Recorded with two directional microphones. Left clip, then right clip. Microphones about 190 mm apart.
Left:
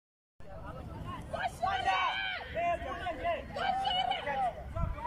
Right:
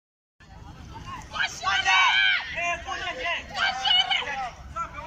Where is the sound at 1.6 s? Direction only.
35° left (ahead or behind).